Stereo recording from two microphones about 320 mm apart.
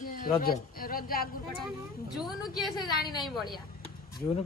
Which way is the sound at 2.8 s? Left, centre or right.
Centre.